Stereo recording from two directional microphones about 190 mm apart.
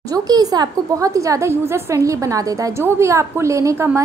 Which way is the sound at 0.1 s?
20° right (ahead or behind).